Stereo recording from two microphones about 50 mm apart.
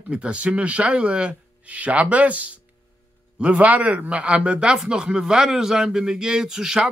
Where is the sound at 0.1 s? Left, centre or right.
Right.